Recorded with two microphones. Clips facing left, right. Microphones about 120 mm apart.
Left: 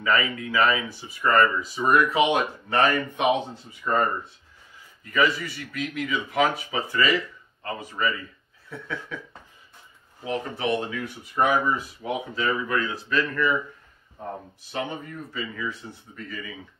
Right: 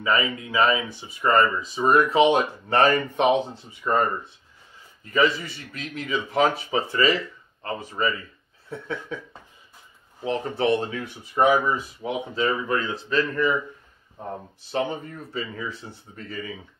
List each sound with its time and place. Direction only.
0.0 s speech: 20° right (ahead or behind)
5.0 s speech: 30° right (ahead or behind)
14.6 s speech: 30° right (ahead or behind)